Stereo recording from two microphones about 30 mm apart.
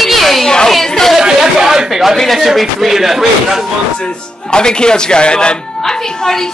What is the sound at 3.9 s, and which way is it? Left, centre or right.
A woman's voice, left.